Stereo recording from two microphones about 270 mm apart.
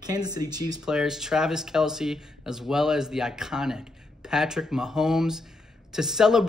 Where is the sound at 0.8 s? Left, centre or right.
Centre.